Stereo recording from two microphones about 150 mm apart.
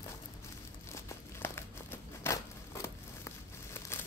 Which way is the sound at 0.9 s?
15° left (ahead or behind).